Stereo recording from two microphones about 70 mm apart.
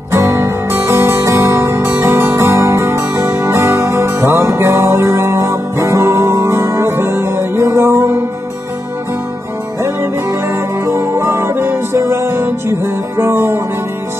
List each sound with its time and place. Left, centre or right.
0.1 s music: right
10.5 s music: right